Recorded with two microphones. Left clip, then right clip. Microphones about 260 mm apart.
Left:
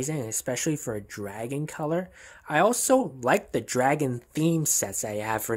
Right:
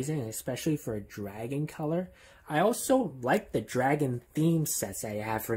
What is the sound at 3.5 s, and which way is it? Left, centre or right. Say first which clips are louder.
Speech: left 4 dB; left.